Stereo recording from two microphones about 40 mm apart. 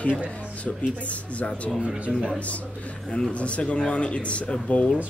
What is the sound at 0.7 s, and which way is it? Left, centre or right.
Speech, left.